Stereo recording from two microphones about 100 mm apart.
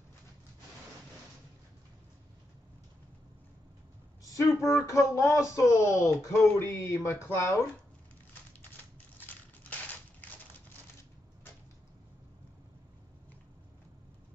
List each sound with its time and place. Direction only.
4.2 s speech: 35° left (ahead or behind)
9.2 s crushing: 15° left (ahead or behind)